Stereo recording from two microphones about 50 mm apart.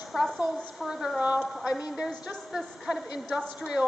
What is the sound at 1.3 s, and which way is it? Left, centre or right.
A woman's voice, centre.